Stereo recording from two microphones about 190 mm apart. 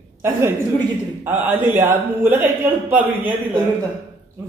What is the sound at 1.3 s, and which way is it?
A man's voice, 10° right (ahead or behind).